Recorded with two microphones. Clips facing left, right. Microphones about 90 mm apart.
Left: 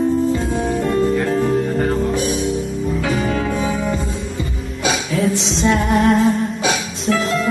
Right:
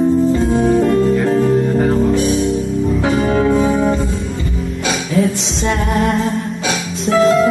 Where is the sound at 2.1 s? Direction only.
15° left (ahead or behind).